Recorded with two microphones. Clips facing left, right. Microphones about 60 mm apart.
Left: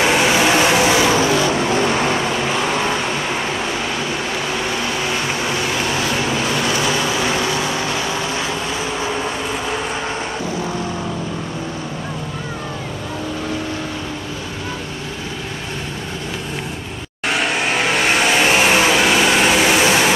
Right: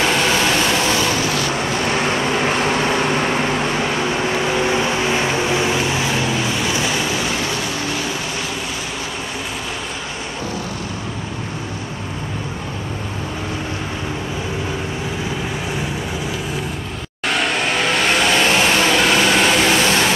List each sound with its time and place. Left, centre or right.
0.0 s vehicle: centre
2.0 s vehicle: right
4.6 s vehicle: right
6.8 s vehicle: left
17.3 s vehicle: centre